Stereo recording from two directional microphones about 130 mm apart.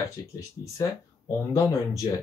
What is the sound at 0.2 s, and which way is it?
Speech, 25° left (ahead or behind).